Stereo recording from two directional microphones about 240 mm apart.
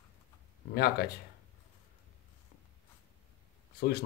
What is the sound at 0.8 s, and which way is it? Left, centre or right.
Speech, left.